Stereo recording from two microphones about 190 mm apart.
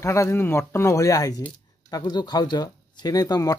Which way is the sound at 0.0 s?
15° left (ahead or behind).